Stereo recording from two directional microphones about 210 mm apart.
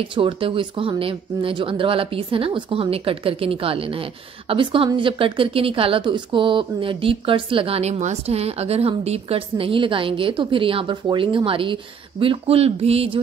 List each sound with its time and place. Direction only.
0.1 s speech: 25° right (ahead or behind)